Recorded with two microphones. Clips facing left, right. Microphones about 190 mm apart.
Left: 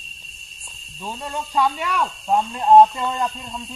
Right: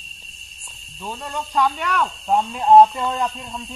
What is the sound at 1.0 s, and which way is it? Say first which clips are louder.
Speech: even; 10° left (ahead or behind).